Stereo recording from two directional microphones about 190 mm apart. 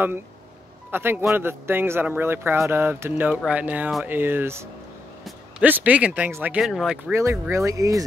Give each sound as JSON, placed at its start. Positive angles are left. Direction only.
{"t": 0.9, "sound": "speech", "side_deg": -10}
{"t": 7.1, "sound": "speech", "side_deg": -15}